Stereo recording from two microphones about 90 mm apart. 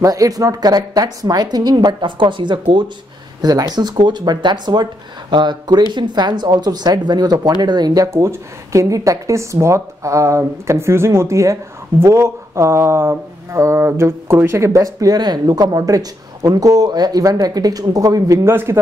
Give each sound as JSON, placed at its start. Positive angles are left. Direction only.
{"t": 0.0, "sound": "a woman's voice", "side_deg": -40}
{"t": 3.4, "sound": "a woman's voice", "side_deg": -45}
{"t": 18.4, "sound": "speech", "side_deg": -25}